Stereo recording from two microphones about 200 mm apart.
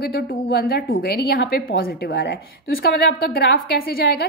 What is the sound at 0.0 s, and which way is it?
A woman's voice, 50° left (ahead or behind).